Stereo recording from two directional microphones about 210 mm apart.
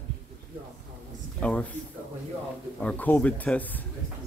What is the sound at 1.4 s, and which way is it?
Speech, 5° left (ahead or behind).